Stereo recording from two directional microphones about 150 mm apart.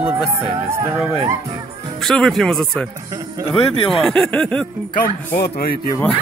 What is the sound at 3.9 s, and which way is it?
Speech, 5° left (ahead or behind).